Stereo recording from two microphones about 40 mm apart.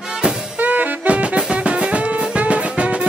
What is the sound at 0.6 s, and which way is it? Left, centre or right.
Music, right.